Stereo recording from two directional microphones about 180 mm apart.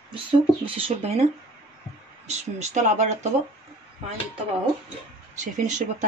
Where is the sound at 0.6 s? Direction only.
30° right (ahead or behind).